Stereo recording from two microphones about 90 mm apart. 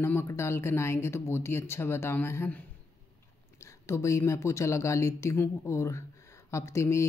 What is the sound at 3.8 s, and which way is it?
Speech, 30° left (ahead or behind).